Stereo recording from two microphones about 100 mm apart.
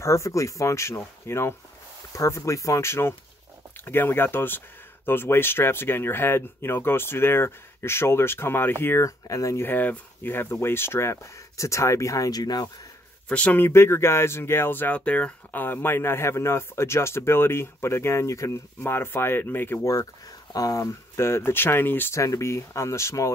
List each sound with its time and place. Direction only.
0.0 s speech: 30° left (ahead or behind)
9.7 s speech: 20° left (ahead or behind); by 12.6 s 40° left (ahead or behind)
13.3 s speech: 15° left (ahead or behind)
13.7 s speech: 25° left (ahead or behind)
18.8 s speech: 20° left (ahead or behind)